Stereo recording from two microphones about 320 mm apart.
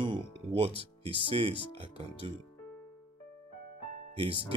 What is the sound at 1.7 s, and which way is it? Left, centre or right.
Speech, centre.